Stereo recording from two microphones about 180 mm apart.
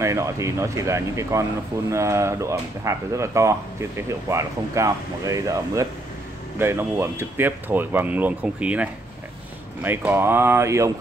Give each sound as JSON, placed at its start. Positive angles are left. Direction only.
{"t": 0.0, "sound": "speech", "side_deg": -15}